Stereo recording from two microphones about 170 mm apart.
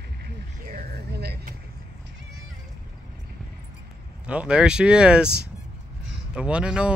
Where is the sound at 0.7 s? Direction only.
65° right (ahead or behind).